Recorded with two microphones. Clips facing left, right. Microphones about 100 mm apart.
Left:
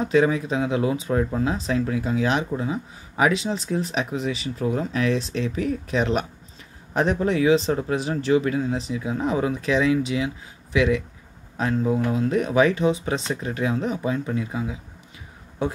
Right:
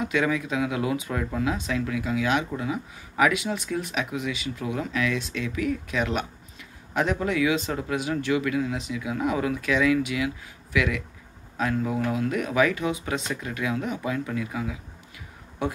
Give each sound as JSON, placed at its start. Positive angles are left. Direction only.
{"t": 0.0, "sound": "speech", "side_deg": 35}